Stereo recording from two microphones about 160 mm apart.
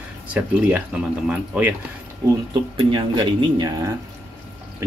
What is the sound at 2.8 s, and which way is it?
Speech, 30° right (ahead or behind).